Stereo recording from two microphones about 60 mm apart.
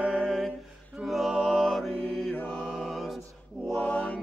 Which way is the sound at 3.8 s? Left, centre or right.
Centre.